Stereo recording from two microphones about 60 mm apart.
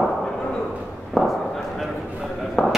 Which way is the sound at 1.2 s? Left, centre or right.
Centre.